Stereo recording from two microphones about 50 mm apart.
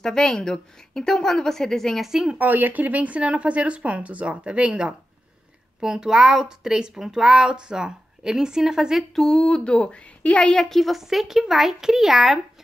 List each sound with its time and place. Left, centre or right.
0.0 s a woman's voice: centre
2.0 s a woman's voice: centre
2.3 s speech: right
5.8 s a woman's voice: centre
9.1 s a woman's voice: centre
10.5 s a child's voice: centre